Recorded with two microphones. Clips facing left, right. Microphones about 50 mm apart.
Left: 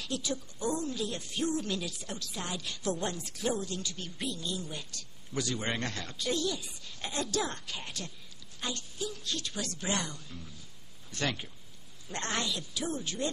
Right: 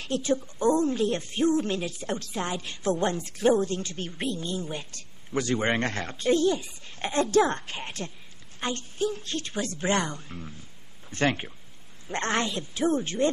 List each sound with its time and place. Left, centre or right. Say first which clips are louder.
0.0 s a woman's voice: right 9 dB; right